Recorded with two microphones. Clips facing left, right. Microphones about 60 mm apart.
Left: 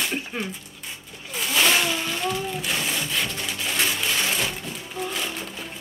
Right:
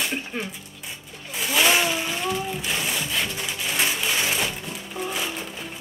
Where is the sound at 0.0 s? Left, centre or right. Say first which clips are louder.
Even; centre.